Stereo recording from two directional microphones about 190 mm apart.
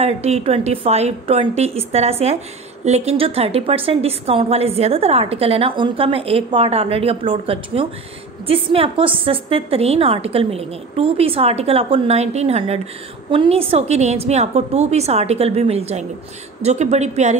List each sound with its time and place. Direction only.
0.0 s a woman's voice: 35° right (ahead or behind)